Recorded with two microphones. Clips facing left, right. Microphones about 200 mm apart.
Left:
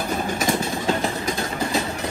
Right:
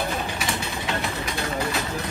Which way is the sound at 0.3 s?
45° left (ahead or behind).